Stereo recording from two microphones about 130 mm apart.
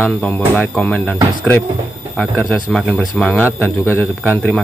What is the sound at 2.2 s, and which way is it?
A man's voice, 5° left (ahead or behind).